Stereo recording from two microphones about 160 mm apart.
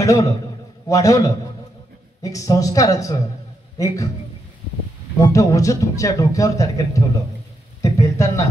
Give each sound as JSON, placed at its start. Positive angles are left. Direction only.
{"t": 0.0, "sound": "a man's voice", "side_deg": 20}
{"t": 5.2, "sound": "speech", "side_deg": 20}
{"t": 7.8, "sound": "a sound", "side_deg": 20}